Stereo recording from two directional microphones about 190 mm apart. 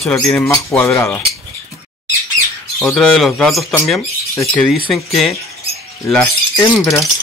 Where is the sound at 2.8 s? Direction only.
5° left (ahead or behind).